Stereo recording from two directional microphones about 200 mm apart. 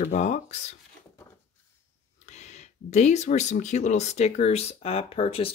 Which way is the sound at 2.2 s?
35° left (ahead or behind).